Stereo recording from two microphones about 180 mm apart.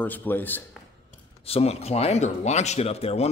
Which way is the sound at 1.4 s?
35° left (ahead or behind).